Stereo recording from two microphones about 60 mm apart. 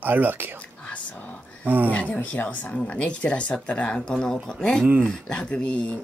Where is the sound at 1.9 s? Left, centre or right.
Left.